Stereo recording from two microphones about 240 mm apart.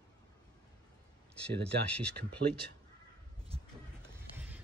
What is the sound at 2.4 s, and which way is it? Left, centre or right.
Speech, right.